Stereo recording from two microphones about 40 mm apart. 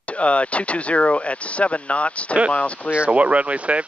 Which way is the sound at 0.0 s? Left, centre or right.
Left.